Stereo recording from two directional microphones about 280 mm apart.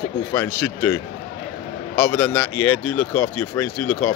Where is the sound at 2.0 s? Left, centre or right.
Centre.